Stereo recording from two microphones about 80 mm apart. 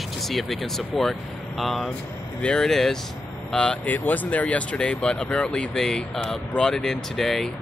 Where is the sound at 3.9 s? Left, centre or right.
Left.